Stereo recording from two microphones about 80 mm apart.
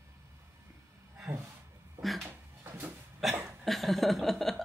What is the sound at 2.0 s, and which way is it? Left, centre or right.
Speech, centre.